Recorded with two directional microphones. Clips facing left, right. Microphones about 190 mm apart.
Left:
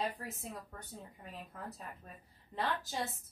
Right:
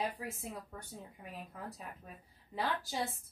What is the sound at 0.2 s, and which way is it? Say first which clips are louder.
A woman's voice: right 2 dB; 10° right (ahead or behind).